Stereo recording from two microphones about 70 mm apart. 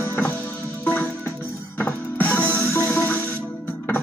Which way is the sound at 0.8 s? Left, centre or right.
Left.